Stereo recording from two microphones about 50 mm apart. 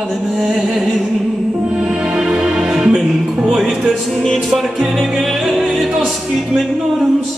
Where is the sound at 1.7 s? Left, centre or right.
Centre.